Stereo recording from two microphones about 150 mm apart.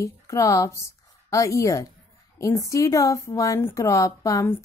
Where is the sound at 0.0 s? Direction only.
20° left (ahead or behind).